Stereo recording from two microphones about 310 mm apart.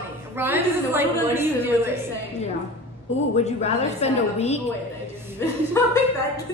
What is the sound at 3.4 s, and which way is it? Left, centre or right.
A woman's voice, left.